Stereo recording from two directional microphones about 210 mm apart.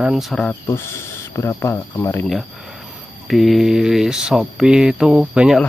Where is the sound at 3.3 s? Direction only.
Centre (ahead or behind).